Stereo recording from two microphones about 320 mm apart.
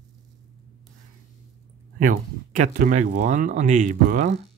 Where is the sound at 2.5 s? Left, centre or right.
Right.